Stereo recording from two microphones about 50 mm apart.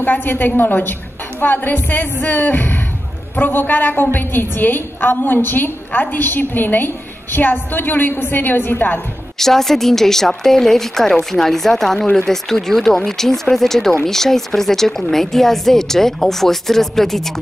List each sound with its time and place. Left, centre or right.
0.0 s a woman's voice: left
9.4 s speech: centre